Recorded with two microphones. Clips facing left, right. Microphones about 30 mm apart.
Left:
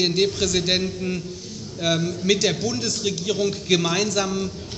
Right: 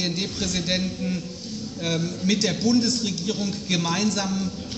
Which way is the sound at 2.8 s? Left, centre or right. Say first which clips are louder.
Right 2 dB; left.